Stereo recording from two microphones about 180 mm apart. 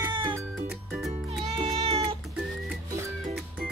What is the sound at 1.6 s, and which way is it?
Cat, 35° right (ahead or behind).